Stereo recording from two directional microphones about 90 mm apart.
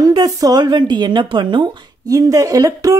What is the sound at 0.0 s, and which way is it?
Speech, 45° right (ahead or behind).